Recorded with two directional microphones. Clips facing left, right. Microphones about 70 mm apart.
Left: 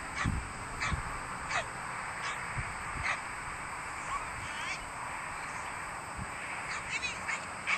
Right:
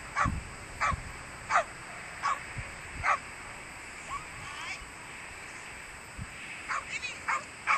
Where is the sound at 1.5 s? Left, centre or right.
Right.